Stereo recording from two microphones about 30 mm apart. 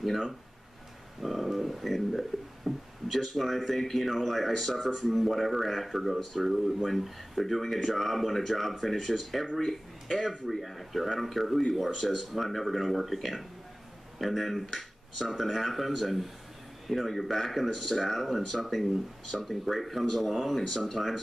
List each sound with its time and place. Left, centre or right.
1.2 s speech: centre
2.6 s speech: centre
3.1 s speech: centre
6.5 s speech: centre
6.9 s speech: centre